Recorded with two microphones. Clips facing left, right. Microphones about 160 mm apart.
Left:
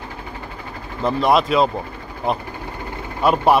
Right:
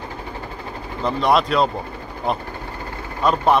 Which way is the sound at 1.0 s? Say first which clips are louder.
Left 1 dB; centre (ahead or behind).